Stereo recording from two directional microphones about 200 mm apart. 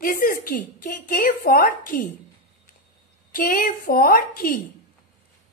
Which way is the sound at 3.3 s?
45° left (ahead or behind).